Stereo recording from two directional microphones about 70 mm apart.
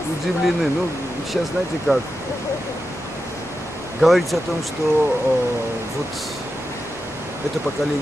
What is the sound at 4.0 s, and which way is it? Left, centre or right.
Speech, centre.